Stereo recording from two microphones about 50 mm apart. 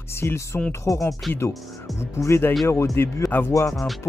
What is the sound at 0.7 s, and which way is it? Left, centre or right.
Speech, left.